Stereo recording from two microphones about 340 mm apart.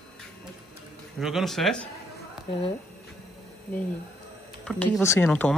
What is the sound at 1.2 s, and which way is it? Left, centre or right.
Speech, centre.